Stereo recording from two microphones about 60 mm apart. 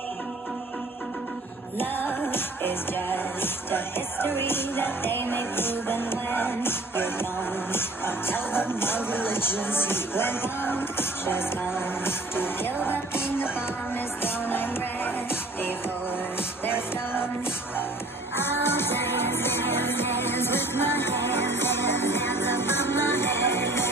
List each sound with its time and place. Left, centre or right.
1.8 s music: left
18.4 s music: left